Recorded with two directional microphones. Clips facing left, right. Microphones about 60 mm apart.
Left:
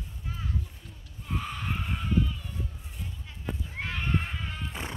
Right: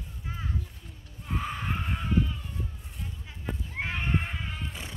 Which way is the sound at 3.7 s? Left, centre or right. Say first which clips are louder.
Right 1 dB; centre.